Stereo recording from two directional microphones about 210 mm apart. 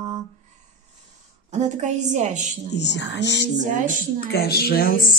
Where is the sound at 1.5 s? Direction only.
35° right (ahead or behind).